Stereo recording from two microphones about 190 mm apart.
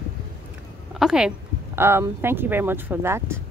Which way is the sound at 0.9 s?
Centre (ahead or behind).